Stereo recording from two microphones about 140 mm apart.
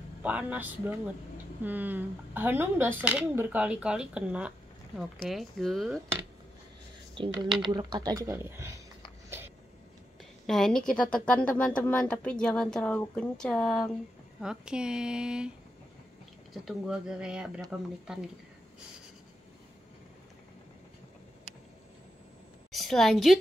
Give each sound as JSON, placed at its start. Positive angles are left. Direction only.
{"t": 0.2, "sound": "speech", "side_deg": -10}
{"t": 7.2, "sound": "speech", "side_deg": -35}
{"t": 10.4, "sound": "a woman's voice", "side_deg": 5}
{"t": 16.5, "sound": "speech", "side_deg": 0}
{"t": 22.7, "sound": "a woman's voice", "side_deg": 0}